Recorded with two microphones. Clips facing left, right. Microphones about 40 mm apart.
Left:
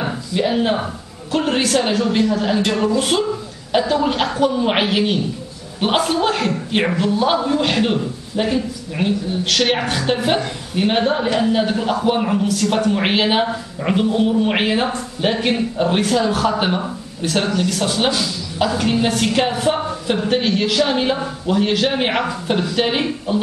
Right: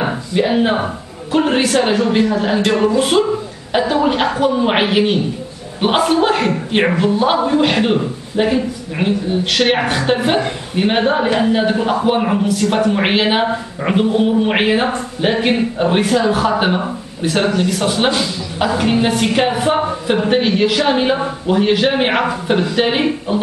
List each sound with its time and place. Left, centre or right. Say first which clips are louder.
0.0 s a man's voice: right 3 dB; centre